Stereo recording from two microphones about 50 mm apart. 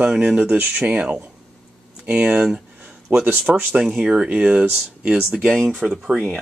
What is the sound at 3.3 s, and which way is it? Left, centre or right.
Speech, right.